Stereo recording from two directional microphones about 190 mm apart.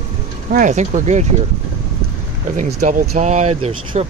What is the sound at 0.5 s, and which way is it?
Speech, 40° right (ahead or behind).